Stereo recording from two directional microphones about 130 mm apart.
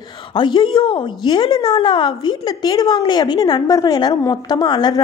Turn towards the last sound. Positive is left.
turn(degrees=35)  # may be behind; listen again after turning